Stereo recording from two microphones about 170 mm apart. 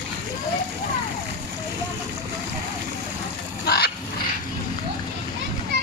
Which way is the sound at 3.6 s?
70° left (ahead or behind).